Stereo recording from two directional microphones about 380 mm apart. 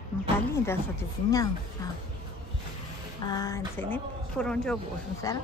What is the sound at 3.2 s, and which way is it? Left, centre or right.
Speech, centre.